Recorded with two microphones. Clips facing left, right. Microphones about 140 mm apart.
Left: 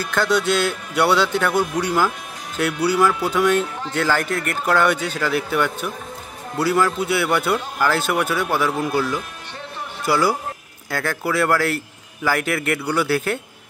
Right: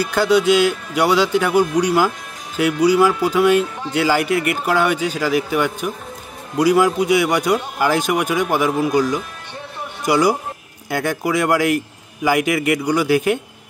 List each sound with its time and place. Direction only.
0.0 s speech: 5° right (ahead or behind)